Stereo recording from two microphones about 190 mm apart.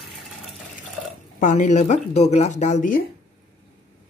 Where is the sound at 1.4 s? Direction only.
40° left (ahead or behind).